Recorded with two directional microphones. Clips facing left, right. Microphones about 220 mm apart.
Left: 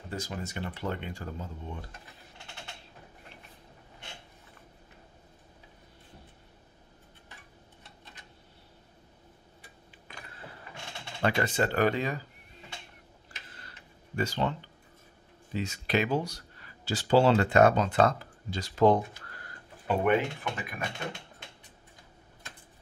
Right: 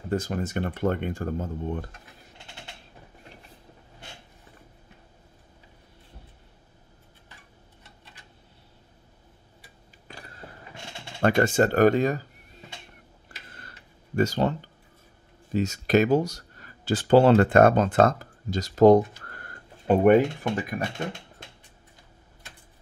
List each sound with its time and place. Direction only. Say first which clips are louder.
0.1 s speech: right 9 dB; 55° right (ahead or behind)
11.1 s speech: right 7 dB; 50° right (ahead or behind)
13.5 s tick-tock: right 3 dB; 50° right (ahead or behind)
15.5 s speech: right 8 dB; 45° right (ahead or behind)